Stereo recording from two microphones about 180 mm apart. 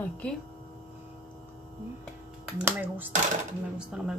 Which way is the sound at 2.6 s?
10° right (ahead or behind).